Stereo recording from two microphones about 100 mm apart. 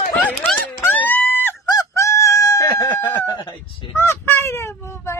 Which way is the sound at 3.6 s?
65° left (ahead or behind).